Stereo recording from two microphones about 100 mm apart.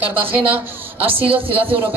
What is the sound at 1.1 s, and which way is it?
Speech, 65° right (ahead or behind).